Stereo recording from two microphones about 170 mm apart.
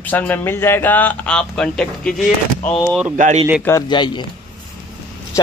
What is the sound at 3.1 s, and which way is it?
Speech, 45° right (ahead or behind).